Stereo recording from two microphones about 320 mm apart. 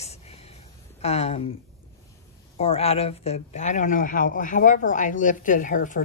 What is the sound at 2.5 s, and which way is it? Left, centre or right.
Speech, centre.